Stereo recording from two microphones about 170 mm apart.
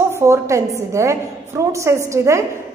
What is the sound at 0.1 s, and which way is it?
A woman's voice, 15° right (ahead or behind).